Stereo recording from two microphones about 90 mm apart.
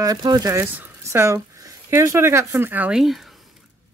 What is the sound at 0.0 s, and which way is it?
Speech, 50° right (ahead or behind).